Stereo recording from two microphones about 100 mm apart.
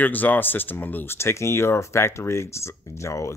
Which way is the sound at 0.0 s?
15° left (ahead or behind).